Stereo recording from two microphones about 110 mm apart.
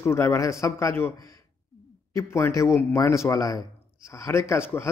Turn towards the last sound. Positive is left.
turn(degrees=20)  # may be behind; listen again after turning